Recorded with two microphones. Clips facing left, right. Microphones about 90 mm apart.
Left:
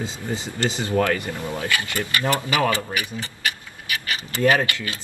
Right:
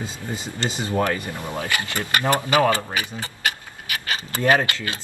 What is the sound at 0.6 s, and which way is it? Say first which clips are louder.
Speech: left 1 dB; 20° right (ahead or behind).